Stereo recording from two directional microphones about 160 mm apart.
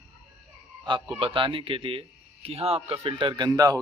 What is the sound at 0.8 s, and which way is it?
A man's voice, 30° right (ahead or behind).